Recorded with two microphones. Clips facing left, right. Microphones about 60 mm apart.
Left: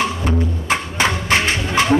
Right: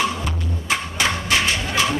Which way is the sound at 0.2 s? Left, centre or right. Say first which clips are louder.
Left 7 dB; left.